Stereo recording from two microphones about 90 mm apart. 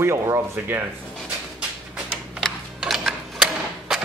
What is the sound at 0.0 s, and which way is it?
Speech, 30° right (ahead or behind).